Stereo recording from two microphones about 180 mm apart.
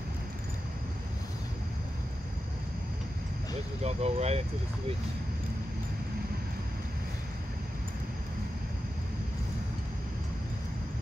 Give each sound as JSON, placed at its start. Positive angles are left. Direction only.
{"t": 3.8, "sound": "speech", "side_deg": -35}